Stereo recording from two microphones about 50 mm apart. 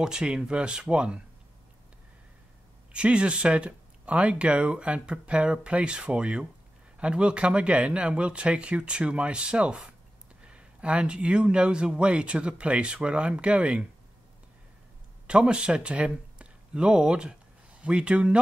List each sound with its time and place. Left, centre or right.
0.0 s speech: centre
2.9 s speech: right
15.2 s speech: right